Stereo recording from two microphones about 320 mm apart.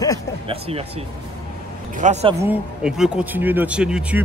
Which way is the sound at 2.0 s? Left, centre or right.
Centre.